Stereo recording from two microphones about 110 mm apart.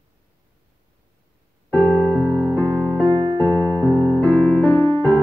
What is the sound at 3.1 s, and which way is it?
Keyboard, 35° right (ahead or behind).